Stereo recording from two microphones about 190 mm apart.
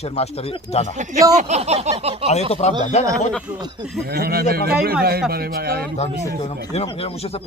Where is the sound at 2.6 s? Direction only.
35° left (ahead or behind).